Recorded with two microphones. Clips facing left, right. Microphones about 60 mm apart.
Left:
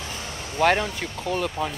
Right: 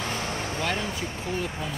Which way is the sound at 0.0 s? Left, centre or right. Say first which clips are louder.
Right 4 dB; right.